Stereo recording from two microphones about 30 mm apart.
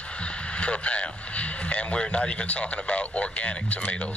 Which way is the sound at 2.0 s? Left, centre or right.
Left.